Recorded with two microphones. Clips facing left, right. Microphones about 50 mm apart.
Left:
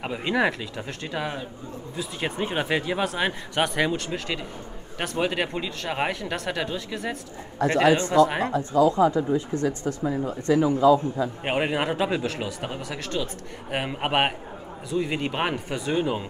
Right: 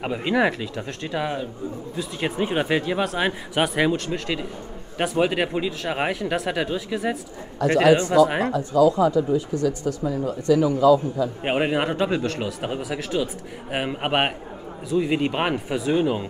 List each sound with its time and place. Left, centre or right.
0.0 s speech: centre
8.5 s speech: left
11.4 s speech: centre